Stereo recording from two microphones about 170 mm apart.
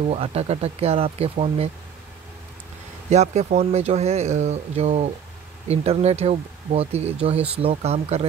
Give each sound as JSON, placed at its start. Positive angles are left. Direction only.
{"t": 0.1, "sound": "speech", "side_deg": -35}
{"t": 3.1, "sound": "speech", "side_deg": -40}